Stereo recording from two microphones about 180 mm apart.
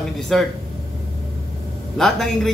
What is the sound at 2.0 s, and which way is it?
Speech, centre (ahead or behind).